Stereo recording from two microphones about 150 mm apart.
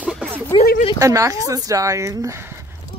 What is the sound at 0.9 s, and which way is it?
Speech, 20° right (ahead or behind).